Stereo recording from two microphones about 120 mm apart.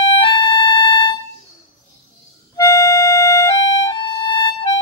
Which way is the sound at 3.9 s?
40° left (ahead or behind).